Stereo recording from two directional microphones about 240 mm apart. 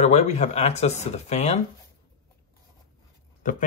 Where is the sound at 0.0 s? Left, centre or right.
Left.